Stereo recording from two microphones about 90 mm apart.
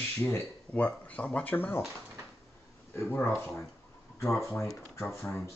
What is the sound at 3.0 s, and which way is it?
Speech, 25° left (ahead or behind).